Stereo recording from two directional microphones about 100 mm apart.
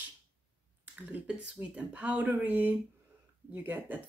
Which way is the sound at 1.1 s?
10° right (ahead or behind).